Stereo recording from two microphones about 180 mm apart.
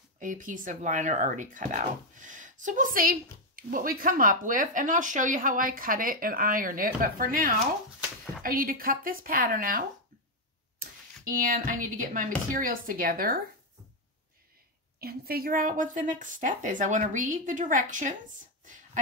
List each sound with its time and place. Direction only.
0.2 s speech: 45° right (ahead or behind)
11.4 s speech: 50° right (ahead or behind)
15.0 s speech: 55° right (ahead or behind)